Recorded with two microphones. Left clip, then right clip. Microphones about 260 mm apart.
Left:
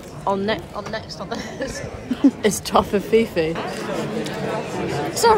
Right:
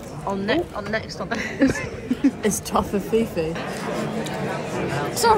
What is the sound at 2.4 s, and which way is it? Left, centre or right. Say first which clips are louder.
Speech: left 4 dB; centre.